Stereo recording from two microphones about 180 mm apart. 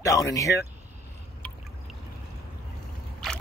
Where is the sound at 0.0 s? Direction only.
20° left (ahead or behind).